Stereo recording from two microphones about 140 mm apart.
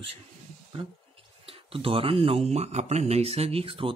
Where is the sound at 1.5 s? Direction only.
40° right (ahead or behind).